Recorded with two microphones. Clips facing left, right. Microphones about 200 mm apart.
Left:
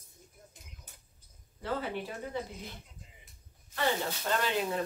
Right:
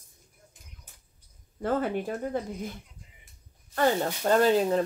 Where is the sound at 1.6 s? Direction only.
50° right (ahead or behind).